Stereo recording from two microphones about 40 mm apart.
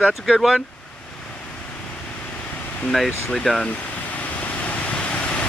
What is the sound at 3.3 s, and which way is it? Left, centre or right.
Speech, centre.